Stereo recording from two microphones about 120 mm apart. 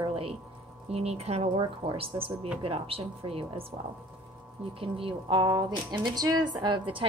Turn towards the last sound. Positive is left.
turn(degrees=-40)  # may be behind; listen again after turning